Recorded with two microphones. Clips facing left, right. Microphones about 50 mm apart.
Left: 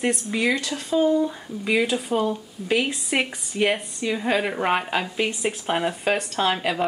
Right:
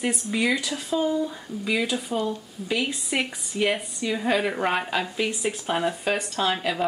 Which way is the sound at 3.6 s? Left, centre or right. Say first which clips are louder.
Left 2 dB; centre.